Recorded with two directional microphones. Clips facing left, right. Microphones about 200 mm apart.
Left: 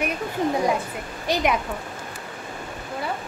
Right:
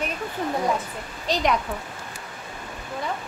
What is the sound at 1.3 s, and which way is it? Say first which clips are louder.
Speech: left 1 dB; 10° left (ahead or behind).